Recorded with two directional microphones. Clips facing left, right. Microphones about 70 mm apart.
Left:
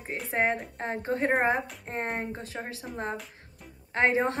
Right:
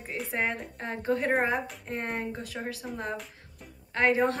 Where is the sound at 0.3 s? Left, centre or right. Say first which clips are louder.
Left 5 dB; left.